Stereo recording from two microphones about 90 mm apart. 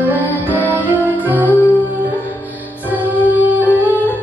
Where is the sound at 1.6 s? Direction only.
20° left (ahead or behind).